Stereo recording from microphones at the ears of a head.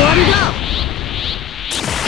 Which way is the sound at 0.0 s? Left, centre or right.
Left.